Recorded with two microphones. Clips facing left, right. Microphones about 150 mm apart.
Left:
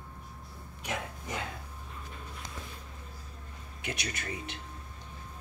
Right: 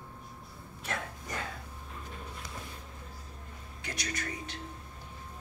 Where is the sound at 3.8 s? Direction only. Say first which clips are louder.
Even; 20° left (ahead or behind).